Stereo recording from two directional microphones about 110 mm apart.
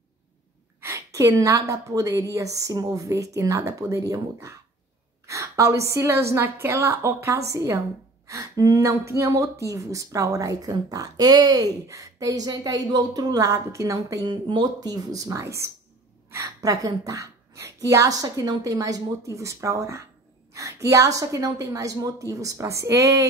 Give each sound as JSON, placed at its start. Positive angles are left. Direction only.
{"t": 0.7, "sound": "a woman's voice", "side_deg": -25}
{"t": 14.2, "sound": "a woman's voice", "side_deg": -45}